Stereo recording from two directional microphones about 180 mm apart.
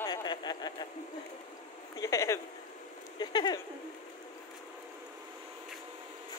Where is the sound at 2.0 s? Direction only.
15° left (ahead or behind).